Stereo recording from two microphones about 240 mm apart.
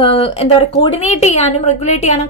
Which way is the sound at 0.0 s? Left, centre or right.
Left.